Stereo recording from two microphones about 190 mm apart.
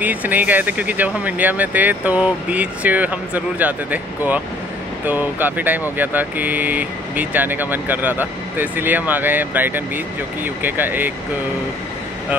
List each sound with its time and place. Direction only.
0.0 s speech: 10° right (ahead or behind)